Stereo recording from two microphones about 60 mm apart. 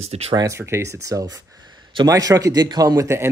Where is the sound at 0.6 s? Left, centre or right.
Right.